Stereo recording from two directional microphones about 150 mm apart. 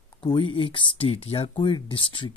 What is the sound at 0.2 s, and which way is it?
Speech, 35° left (ahead or behind).